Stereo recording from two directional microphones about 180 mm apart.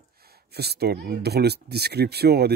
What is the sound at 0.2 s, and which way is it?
A child's voice, 60° right (ahead or behind).